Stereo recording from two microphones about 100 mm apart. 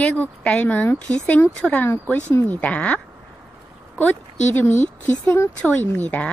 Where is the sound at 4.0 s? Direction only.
20° left (ahead or behind).